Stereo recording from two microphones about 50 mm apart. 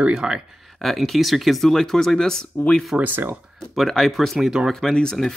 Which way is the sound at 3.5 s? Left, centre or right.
Centre.